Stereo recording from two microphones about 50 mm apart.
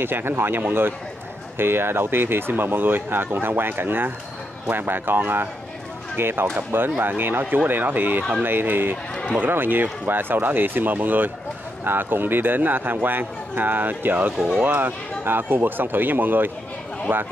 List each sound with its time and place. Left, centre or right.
0.0 s a man's voice: right